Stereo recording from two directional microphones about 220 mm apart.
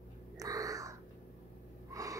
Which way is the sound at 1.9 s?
15° right (ahead or behind).